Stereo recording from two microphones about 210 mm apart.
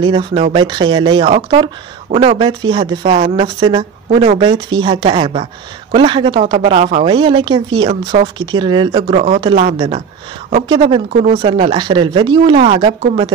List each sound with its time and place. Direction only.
0.0 s speech: 25° right (ahead or behind)
7.1 s speech: 25° right (ahead or behind)
9.1 s speech: 30° right (ahead or behind)